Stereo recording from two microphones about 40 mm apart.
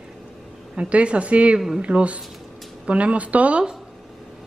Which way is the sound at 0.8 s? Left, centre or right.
Right.